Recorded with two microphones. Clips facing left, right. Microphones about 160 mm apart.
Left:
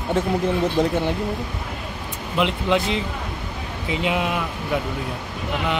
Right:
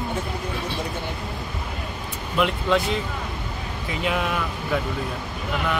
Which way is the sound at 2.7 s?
20° left (ahead or behind).